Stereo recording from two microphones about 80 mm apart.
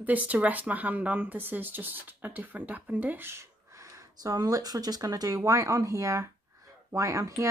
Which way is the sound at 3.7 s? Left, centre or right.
Right.